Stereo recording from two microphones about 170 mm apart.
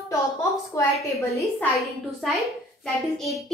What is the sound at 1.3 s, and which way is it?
A woman's voice, centre (ahead or behind).